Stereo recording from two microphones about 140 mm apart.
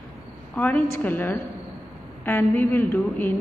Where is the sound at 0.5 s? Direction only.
15° left (ahead or behind).